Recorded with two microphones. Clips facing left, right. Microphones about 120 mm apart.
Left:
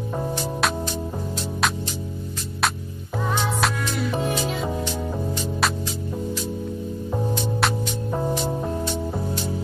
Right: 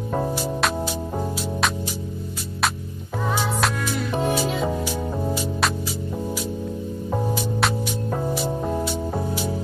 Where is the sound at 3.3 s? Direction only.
5° right (ahead or behind).